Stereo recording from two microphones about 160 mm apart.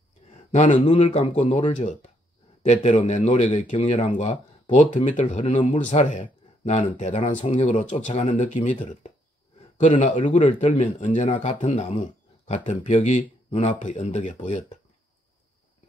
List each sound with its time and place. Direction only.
0.5 s speech: 45° left (ahead or behind)